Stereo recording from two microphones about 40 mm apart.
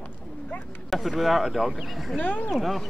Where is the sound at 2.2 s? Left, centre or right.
Left.